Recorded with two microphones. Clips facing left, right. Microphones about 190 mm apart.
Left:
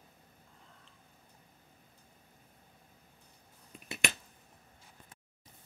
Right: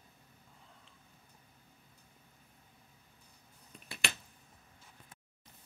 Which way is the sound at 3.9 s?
20° left (ahead or behind).